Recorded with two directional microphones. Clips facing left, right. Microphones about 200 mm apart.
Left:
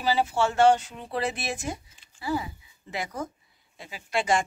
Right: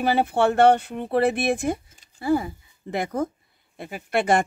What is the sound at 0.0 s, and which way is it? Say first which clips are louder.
Speech: right 4 dB; 55° right (ahead or behind).